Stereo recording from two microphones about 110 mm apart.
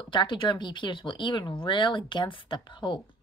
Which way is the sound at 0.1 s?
45° left (ahead or behind).